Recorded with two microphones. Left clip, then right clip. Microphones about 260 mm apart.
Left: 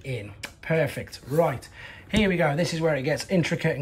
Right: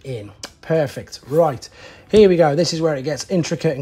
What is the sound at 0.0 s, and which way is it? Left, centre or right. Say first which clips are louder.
Speech: right 4 dB; centre.